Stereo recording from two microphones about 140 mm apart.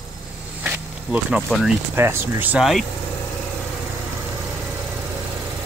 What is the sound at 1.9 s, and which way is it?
Speech, 15° right (ahead or behind).